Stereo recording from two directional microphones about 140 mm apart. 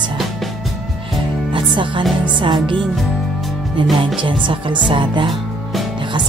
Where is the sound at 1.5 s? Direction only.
35° right (ahead or behind).